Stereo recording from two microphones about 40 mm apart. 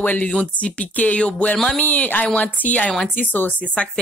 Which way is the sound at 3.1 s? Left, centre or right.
Left.